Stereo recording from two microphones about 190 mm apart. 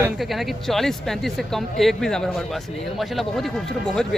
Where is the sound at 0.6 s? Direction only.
Centre (ahead or behind).